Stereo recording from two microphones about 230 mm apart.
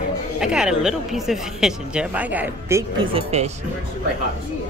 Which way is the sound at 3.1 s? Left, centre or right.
Right.